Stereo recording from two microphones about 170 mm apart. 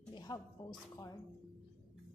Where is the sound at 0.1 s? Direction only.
25° left (ahead or behind).